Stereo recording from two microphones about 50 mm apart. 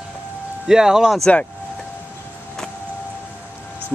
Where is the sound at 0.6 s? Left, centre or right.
Centre.